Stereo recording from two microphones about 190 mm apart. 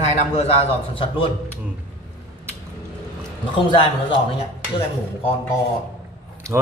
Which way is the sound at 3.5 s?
25° left (ahead or behind).